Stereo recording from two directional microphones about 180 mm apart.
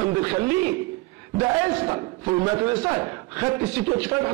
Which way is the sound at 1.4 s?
15° right (ahead or behind).